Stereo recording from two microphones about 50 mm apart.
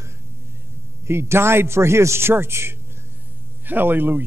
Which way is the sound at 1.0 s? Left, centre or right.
Right.